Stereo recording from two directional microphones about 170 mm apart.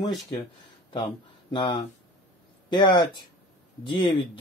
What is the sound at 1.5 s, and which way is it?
Speech, 25° left (ahead or behind).